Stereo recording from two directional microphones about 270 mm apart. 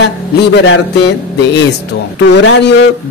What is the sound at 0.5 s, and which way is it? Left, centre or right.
Speech, left.